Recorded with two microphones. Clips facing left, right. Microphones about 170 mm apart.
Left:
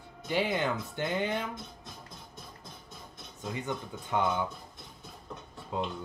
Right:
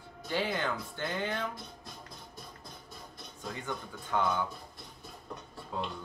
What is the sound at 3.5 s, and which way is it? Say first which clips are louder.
Speech: left 4 dB; 20° left (ahead or behind).